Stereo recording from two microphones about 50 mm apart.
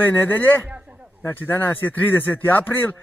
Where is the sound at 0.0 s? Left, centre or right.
Left.